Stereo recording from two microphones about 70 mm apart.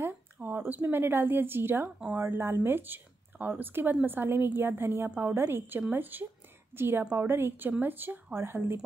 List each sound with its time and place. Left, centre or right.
0.0 s a woman's voice: right